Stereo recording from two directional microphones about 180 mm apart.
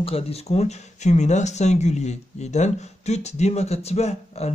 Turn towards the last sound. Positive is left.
turn(degrees=35)  # may be behind; listen again after turning